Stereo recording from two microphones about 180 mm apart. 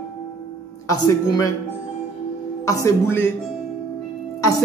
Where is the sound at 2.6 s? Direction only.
15° left (ahead or behind).